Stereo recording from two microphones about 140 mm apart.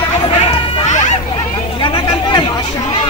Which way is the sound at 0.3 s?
50° left (ahead or behind).